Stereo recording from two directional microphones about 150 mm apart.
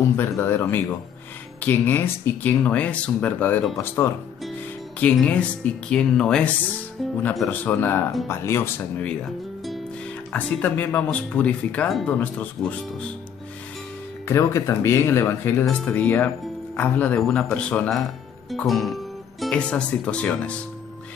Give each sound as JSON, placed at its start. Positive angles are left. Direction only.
{"t": 0.1, "sound": "speech", "side_deg": 15}
{"t": 10.3, "sound": "speech", "side_deg": 10}
{"t": 14.2, "sound": "speech", "side_deg": 20}